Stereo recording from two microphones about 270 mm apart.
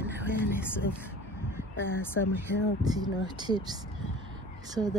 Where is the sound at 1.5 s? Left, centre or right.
Centre.